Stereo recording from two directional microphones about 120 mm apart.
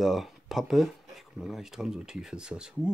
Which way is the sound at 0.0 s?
Centre (ahead or behind).